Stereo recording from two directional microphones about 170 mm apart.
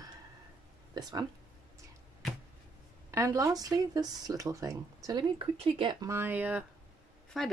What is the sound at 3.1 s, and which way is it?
Speech, 15° right (ahead or behind).